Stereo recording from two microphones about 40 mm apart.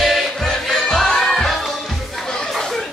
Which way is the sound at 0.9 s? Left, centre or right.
Centre.